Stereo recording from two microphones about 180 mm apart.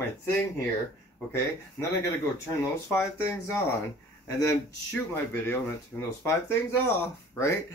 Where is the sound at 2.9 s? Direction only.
15° left (ahead or behind).